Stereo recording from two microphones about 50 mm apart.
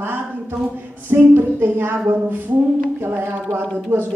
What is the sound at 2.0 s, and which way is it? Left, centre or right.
Speech, right.